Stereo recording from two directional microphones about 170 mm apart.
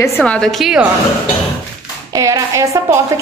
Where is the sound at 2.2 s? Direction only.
20° right (ahead or behind).